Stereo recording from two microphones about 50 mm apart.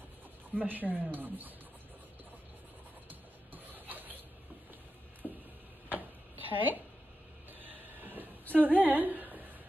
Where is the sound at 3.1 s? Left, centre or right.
Right.